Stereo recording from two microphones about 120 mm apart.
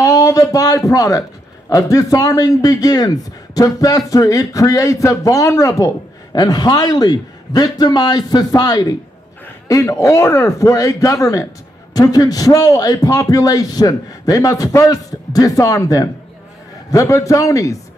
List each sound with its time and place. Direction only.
0.0 s a man's voice: 30° left (ahead or behind)